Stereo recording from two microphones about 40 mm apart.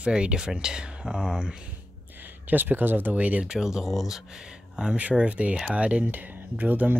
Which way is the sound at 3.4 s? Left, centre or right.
Centre.